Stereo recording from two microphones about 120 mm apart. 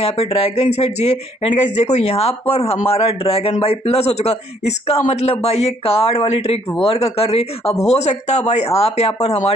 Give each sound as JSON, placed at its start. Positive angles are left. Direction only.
{"t": 0.0, "sound": "speech", "side_deg": 55}